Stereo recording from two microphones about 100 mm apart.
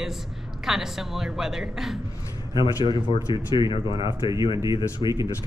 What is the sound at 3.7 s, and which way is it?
Speech, 55° left (ahead or behind).